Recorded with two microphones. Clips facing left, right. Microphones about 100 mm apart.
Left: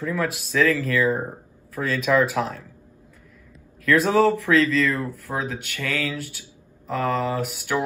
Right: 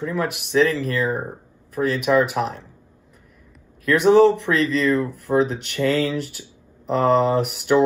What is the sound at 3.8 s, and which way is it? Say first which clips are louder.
Speech: right 4 dB; 25° right (ahead or behind).